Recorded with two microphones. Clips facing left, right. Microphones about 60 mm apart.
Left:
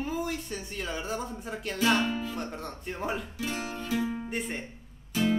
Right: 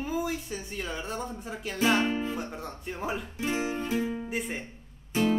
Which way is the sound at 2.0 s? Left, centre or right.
Right.